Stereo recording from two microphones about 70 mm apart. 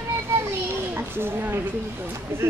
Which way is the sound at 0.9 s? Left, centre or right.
Right.